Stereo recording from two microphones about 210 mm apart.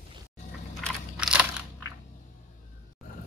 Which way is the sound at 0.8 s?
5° right (ahead or behind).